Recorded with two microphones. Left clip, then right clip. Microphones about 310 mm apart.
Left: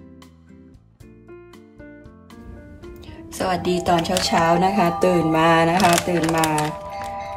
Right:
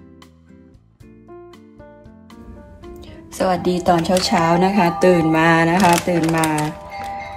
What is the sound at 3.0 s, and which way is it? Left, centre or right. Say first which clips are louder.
Speech: right 5 dB; centre.